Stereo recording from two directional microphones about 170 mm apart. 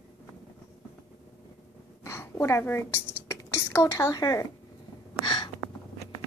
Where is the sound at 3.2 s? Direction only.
15° left (ahead or behind).